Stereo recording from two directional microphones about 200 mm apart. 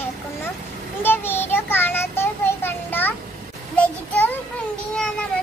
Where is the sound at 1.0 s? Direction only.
10° left (ahead or behind).